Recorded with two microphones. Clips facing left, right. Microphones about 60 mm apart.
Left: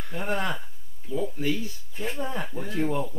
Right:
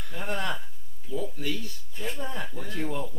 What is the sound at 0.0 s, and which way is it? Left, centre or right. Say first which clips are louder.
Speech: left 3 dB; centre.